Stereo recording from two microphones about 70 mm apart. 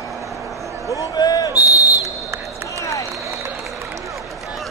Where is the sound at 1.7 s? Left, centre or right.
Right.